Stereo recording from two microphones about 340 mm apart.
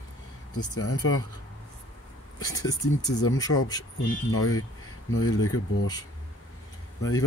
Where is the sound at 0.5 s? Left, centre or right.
Left.